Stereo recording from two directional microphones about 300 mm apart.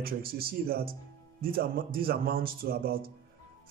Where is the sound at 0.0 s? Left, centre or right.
Right.